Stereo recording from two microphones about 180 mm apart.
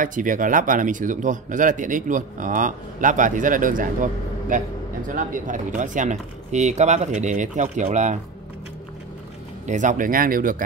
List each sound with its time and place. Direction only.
0.0 s speech: 50° right (ahead or behind)
9.7 s speech: 45° right (ahead or behind)